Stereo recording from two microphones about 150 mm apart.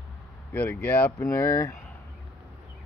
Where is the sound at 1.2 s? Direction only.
20° left (ahead or behind).